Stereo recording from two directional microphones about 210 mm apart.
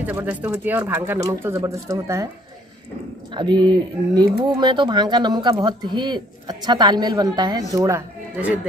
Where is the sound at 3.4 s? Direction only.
20° right (ahead or behind).